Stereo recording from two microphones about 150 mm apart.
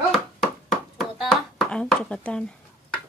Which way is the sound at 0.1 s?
Centre (ahead or behind).